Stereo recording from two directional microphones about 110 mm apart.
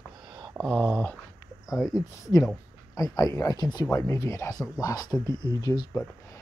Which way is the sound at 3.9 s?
25° left (ahead or behind).